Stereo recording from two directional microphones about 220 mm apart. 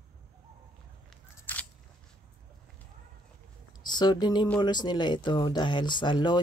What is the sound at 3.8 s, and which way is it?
Speech, 20° left (ahead or behind).